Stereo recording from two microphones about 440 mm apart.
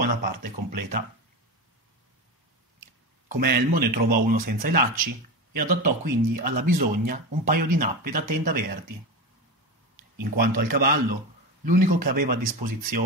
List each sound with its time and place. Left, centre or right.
0.0 s speech: centre
3.3 s speech: centre
10.1 s speech: centre